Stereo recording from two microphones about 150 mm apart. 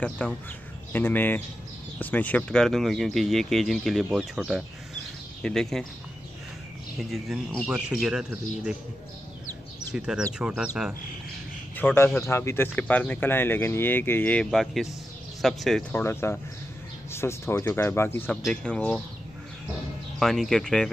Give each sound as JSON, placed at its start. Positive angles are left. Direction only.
{"t": 0.0, "sound": "speech", "side_deg": 10}
{"t": 7.0, "sound": "speech", "side_deg": 0}
{"t": 9.9, "sound": "speech", "side_deg": -5}
{"t": 11.7, "sound": "a man's voice", "side_deg": 15}
{"t": 15.9, "sound": "speech", "side_deg": 15}
{"t": 20.2, "sound": "speech", "side_deg": 0}